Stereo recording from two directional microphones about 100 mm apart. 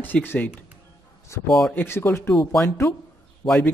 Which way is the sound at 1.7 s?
25° left (ahead or behind).